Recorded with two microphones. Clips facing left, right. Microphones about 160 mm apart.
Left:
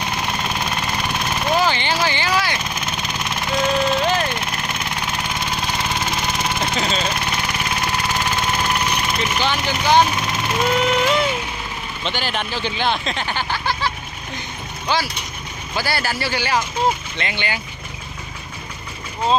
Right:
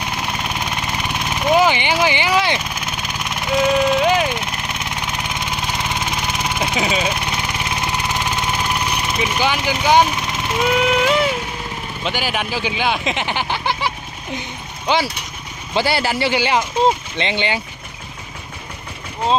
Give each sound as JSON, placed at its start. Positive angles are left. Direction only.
{"t": 0.0, "sound": "vehicle", "side_deg": -15}
{"t": 9.2, "sound": "speech", "side_deg": -10}
{"t": 10.6, "sound": "a sound", "side_deg": -5}
{"t": 12.0, "sound": "speech", "side_deg": -10}